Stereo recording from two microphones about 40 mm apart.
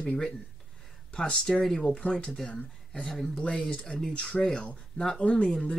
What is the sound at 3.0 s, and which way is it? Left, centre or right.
Speech, centre.